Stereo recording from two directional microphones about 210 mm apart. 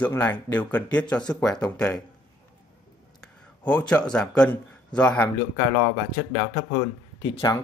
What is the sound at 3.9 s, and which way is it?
A man's voice, 5° left (ahead or behind).